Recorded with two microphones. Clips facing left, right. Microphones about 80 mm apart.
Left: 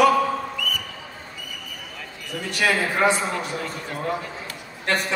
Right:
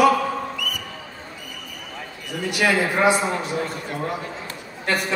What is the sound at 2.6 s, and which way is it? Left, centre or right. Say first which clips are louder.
Speech: right 2 dB; centre.